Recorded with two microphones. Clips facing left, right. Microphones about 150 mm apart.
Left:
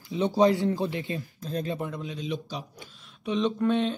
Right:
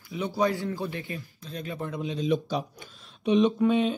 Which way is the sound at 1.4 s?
40° left (ahead or behind).